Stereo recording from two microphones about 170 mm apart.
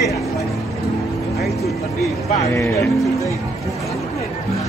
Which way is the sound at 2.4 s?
15° left (ahead or behind).